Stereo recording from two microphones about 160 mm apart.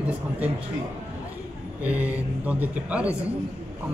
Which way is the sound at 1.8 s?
10° right (ahead or behind).